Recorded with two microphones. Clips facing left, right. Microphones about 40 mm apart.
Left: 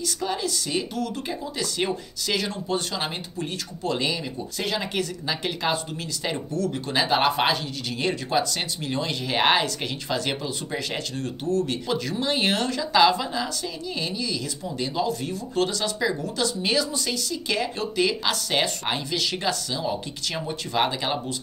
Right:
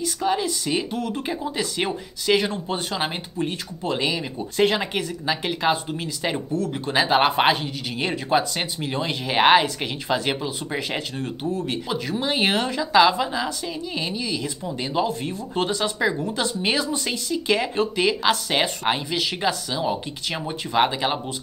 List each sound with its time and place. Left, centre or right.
0.0 s speech: centre
4.4 s speech: right
4.9 s speech: centre